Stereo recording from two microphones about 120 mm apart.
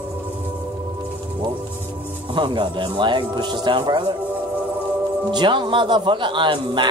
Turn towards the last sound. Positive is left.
turn(degrees=-45)  # may be behind; listen again after turning